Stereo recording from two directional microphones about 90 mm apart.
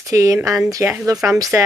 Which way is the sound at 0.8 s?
25° right (ahead or behind).